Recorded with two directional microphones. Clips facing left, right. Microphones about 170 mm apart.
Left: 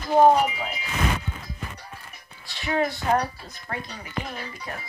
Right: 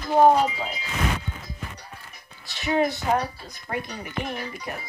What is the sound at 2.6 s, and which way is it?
Speech, 20° right (ahead or behind).